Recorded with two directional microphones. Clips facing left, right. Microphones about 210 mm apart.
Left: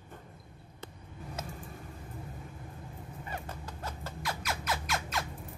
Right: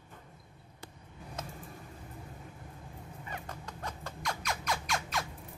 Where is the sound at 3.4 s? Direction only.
5° left (ahead or behind).